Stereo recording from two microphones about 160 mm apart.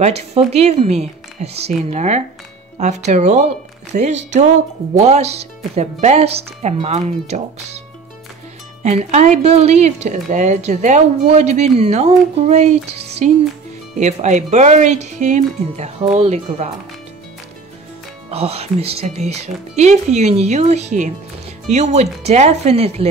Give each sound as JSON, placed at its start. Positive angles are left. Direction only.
{"t": 0.0, "sound": "speech", "side_deg": -40}
{"t": 8.8, "sound": "speech", "side_deg": -45}
{"t": 18.3, "sound": "speech", "side_deg": -40}